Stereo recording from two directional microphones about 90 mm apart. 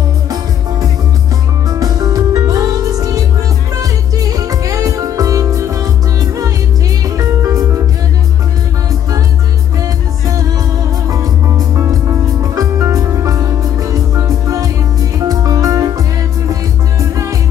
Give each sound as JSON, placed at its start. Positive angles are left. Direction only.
{"t": 1.7, "sound": "music", "side_deg": -45}
{"t": 11.1, "sound": "music", "side_deg": -40}